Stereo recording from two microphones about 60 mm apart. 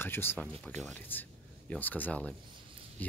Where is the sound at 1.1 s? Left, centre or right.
Left.